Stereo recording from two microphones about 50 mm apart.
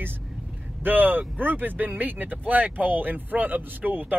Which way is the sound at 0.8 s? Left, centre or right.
Right.